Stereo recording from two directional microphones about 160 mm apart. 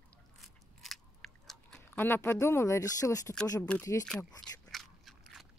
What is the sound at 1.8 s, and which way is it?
Speech, 15° left (ahead or behind).